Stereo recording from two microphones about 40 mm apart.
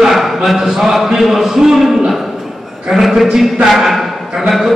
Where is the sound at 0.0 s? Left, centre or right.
Centre.